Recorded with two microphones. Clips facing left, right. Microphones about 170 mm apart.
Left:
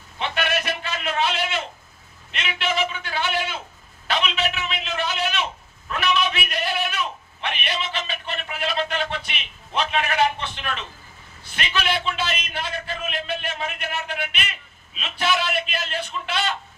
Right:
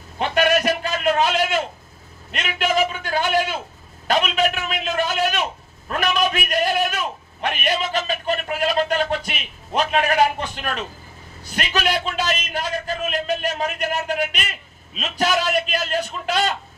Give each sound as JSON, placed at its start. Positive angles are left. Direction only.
{"t": 0.2, "sound": "a man's voice", "side_deg": -45}